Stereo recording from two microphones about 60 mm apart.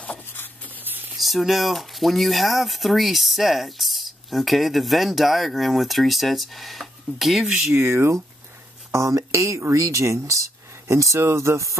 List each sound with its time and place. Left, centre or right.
0.8 s a sound: right
1.1 s speech: centre
7.7 s speech: right
8.9 s speech: right